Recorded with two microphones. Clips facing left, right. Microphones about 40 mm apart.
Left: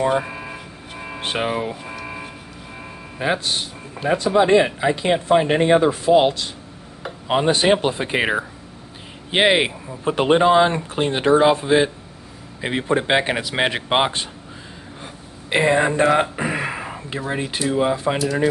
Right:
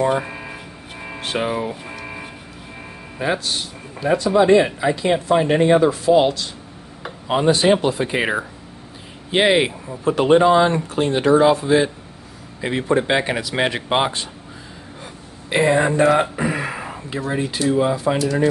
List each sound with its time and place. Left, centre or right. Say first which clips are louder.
0.0 s a sound: even; centre
1.2 s speech: even; left
1.9 s cattle: left 1 dB; centre
3.2 s speech: even; left
15.5 s a sound: right 1 dB; left
17.3 s speech: right 2 dB; left
18.2 s speech: right 1 dB; centre